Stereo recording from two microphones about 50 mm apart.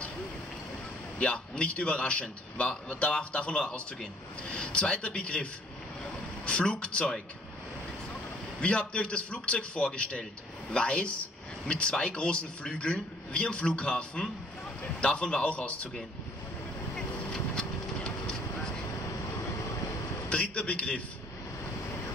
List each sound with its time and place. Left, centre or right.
1.2 s a man's voice: left
8.5 s a man's voice: left
18.8 s vehicle: left
20.2 s a man's voice: left